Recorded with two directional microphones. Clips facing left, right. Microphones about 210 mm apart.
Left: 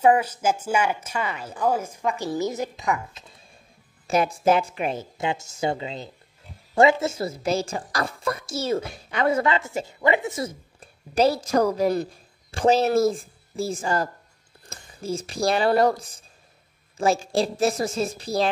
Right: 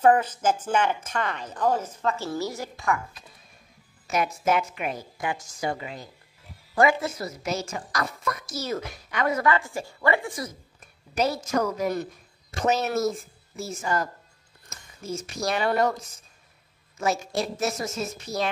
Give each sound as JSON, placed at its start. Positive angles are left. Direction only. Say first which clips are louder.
{"t": 0.0, "sound": "a woman's voice", "louder": "left 1 dB", "side_deg": 10}
{"t": 4.1, "sound": "a woman's voice", "louder": "left 4 dB", "side_deg": 30}